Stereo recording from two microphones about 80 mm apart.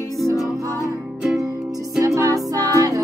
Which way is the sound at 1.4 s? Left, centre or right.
Right.